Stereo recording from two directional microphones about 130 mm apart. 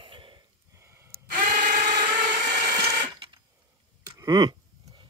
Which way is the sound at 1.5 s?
85° right.